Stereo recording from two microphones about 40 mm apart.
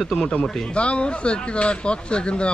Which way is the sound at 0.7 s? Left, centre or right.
Left.